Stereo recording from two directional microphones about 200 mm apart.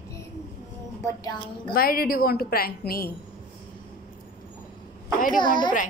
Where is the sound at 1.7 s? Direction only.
45° left (ahead or behind).